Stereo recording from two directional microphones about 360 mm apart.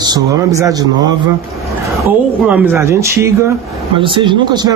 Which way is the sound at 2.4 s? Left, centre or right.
Centre.